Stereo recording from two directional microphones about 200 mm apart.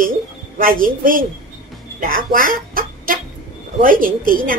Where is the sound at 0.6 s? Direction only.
45° right (ahead or behind).